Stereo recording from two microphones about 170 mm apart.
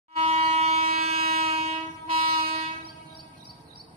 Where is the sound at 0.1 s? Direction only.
40° right (ahead or behind).